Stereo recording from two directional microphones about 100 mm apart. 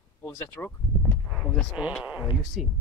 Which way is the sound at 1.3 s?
10° left (ahead or behind).